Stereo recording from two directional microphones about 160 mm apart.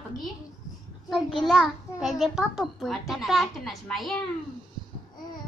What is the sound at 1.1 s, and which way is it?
A child's voice, centre (ahead or behind).